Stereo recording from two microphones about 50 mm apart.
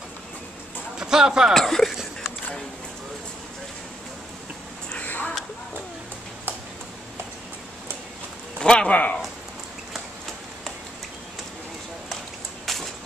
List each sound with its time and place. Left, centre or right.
0.9 s speech: centre
1.5 s speech: centre
5.0 s a sound: left
8.5 s a man's voice: centre
8.9 s speech: left
12.6 s a sound: centre